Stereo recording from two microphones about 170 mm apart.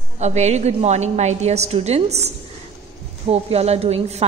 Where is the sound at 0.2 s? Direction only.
40° right (ahead or behind).